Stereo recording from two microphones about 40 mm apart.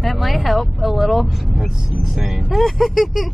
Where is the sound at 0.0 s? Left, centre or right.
Centre.